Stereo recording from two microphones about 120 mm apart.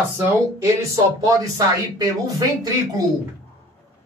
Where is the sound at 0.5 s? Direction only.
25° right (ahead or behind).